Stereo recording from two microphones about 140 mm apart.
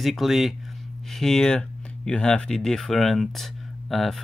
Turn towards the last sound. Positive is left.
turn(degrees=0)  # may be behind; listen again after turning